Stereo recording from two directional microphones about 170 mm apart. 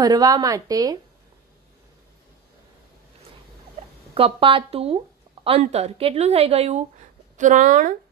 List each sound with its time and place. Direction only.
0.0 s a woman's voice: 20° right (ahead or behind)
4.1 s speech: 35° right (ahead or behind)
7.3 s speech: 45° right (ahead or behind)